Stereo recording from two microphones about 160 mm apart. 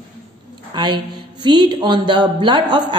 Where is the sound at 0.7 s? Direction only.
30° right (ahead or behind).